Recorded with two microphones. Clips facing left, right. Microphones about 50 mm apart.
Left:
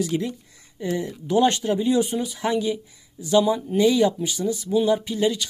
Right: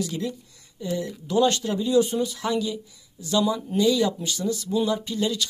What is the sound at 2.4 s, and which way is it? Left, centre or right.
Speech, left.